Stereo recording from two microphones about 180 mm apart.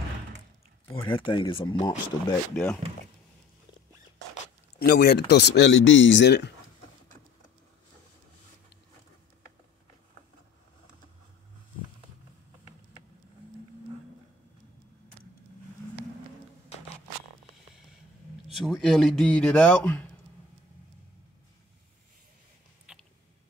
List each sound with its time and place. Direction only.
1.0 s speech: 25° left (ahead or behind)
2.5 s a man's voice: 5° left (ahead or behind)
4.7 s speech: 60° left (ahead or behind); by 6.5 s 75° left (ahead or behind)
18.5 s a man's voice: centre (ahead or behind)
22.9 s a sound: 5° right (ahead or behind)